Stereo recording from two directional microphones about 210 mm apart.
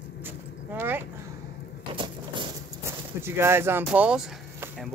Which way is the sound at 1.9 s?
20° right (ahead or behind).